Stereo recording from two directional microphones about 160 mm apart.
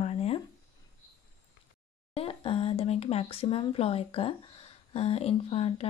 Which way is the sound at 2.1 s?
35° left (ahead or behind).